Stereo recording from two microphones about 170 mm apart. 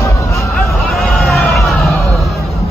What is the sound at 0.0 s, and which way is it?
Vehicle, 20° left (ahead or behind).